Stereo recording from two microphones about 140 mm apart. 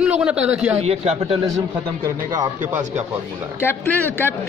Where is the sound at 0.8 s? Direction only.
45° right (ahead or behind).